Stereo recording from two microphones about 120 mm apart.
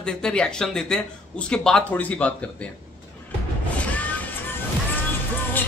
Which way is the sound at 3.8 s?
10° left (ahead or behind).